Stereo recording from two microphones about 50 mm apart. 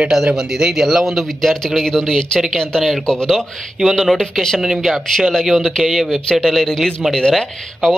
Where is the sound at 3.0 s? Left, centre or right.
Centre.